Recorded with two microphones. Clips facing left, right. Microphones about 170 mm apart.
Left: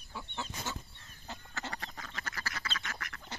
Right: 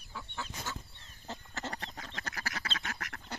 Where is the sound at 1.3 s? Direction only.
40° right (ahead or behind).